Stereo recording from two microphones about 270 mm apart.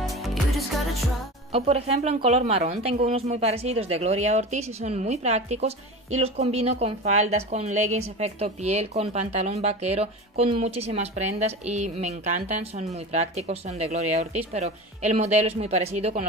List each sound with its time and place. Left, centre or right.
0.0 s music: centre
1.5 s a woman's voice: right